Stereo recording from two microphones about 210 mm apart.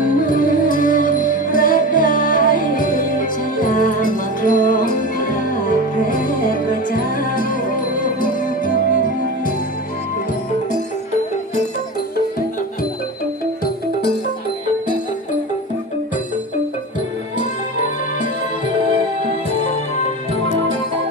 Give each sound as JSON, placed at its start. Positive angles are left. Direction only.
{"t": 0.0, "sound": "music", "side_deg": 40}